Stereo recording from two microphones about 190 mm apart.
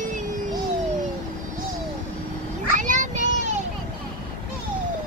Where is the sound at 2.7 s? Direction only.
40° right (ahead or behind).